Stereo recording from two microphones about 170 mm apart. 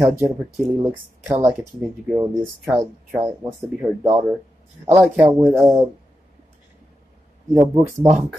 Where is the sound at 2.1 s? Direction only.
20° right (ahead or behind).